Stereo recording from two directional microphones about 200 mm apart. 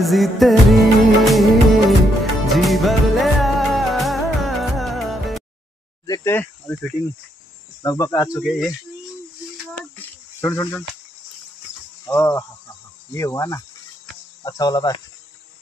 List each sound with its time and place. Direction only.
0.0 s music of bollywood: centre (ahead or behind)
2.4 s music: centre (ahead or behind)
6.0 s cricket: 15° left (ahead or behind)
8.4 s music of bollywood: centre (ahead or behind)
9.8 s cricket: 10° left (ahead or behind)
12.0 s cricket: 10° left (ahead or behind)